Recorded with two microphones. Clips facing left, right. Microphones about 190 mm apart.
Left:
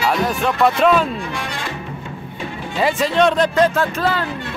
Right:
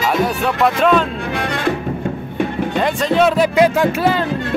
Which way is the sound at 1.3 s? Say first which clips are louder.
Right 7 dB; 60° right (ahead or behind).